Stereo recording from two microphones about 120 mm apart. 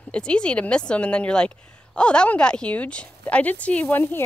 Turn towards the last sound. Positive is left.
turn(degrees=15)  # may be behind; listen again after turning